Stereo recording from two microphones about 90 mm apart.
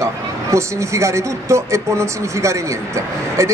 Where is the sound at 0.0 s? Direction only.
35° right (ahead or behind).